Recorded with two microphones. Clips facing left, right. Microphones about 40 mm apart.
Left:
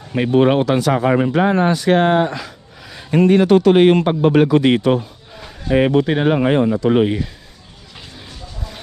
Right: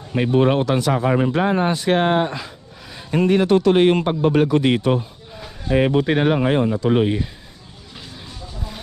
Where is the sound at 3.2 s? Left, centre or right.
Left.